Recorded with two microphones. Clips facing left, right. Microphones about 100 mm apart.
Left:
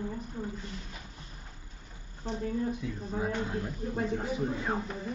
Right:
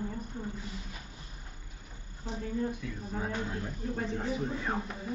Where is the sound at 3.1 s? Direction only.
10° left (ahead or behind).